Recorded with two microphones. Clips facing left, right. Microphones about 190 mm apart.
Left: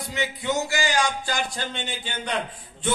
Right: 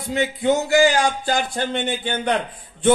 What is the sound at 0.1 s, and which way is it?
Speech, 55° right (ahead or behind).